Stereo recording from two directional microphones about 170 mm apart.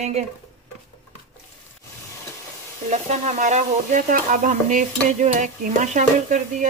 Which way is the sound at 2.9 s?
45° right (ahead or behind).